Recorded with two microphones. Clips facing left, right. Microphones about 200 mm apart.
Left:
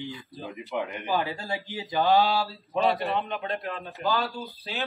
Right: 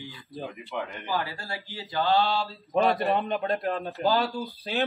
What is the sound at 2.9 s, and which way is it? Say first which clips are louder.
Speech: right 3 dB; centre (ahead or behind).